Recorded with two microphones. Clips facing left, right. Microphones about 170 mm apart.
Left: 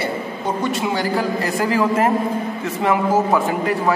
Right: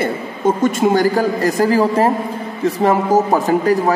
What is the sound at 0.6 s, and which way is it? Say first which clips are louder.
A woman's voice: right 7 dB; 45° right (ahead or behind).